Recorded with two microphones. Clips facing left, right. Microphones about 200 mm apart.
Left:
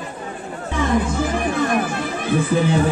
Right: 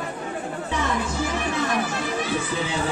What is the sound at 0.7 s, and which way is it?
Music, 55° left (ahead or behind).